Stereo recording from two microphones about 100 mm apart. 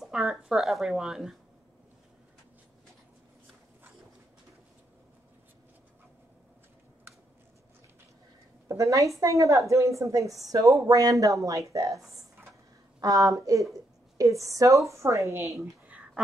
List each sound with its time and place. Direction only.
0.0 s speech: centre (ahead or behind)
8.6 s a woman's voice: 30° right (ahead or behind)
13.0 s a woman's voice: 35° right (ahead or behind)